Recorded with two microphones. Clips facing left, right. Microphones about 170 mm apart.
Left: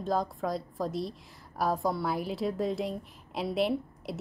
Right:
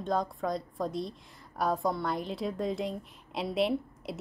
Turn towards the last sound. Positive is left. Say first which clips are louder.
# even
turn(degrees=0)  # may be behind; listen again after turning